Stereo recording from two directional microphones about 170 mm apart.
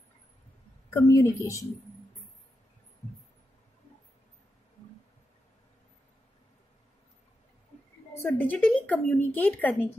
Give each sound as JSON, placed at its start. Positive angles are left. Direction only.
{"t": 0.8, "sound": "speech", "side_deg": 15}
{"t": 8.2, "sound": "speech", "side_deg": 10}